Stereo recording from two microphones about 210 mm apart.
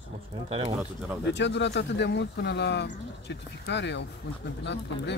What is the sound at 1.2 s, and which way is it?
Speech, 55° left (ahead or behind).